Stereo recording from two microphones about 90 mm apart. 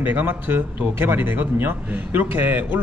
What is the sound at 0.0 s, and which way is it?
A man's voice, 20° right (ahead or behind).